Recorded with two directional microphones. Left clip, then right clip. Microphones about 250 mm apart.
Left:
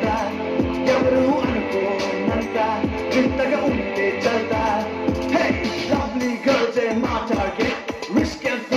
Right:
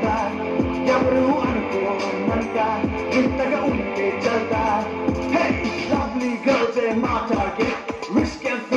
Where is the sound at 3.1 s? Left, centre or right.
Left.